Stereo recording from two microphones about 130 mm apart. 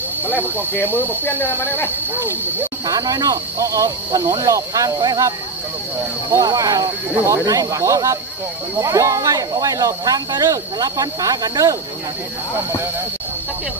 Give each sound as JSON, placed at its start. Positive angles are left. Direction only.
{"t": 0.3, "sound": "speech", "side_deg": -15}
{"t": 1.4, "sound": "speech", "side_deg": 15}
{"t": 2.9, "sound": "speech", "side_deg": -30}
{"t": 6.3, "sound": "speech", "side_deg": -25}